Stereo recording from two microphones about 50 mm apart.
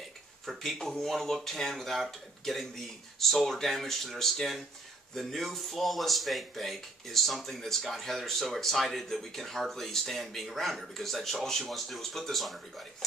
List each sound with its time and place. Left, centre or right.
0.5 s speech: centre